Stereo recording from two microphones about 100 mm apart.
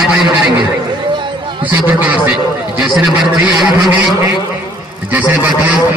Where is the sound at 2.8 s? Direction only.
10° right (ahead or behind).